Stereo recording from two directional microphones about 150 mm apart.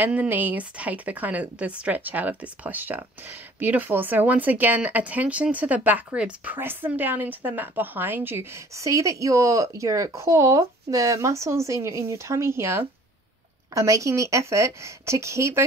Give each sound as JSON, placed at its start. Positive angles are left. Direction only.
{"t": 0.0, "sound": "a woman's voice", "side_deg": -10}